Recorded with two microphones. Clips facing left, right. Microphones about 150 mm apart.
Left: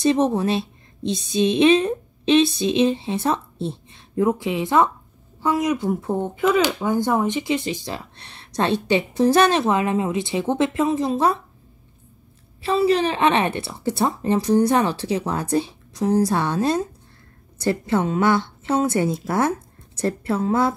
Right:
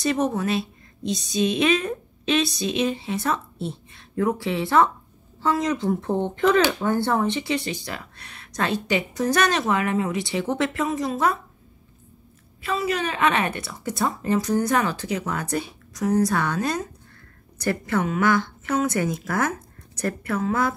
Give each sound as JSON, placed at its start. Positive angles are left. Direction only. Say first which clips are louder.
{"t": 0.0, "sound": "a woman's voice", "louder": "left 4 dB", "side_deg": 25}
{"t": 12.6, "sound": "a woman's voice", "louder": "left 7 dB", "side_deg": 30}